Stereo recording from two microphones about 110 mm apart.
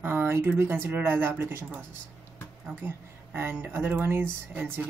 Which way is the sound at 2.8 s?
20° right (ahead or behind).